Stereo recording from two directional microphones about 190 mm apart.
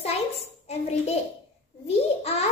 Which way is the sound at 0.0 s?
30° left (ahead or behind).